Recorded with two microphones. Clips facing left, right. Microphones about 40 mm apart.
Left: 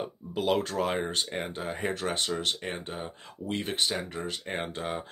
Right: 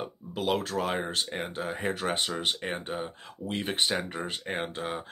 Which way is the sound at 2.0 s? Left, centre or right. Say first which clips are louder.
Right 1 dB; centre.